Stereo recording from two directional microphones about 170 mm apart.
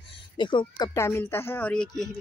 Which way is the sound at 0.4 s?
30° left (ahead or behind).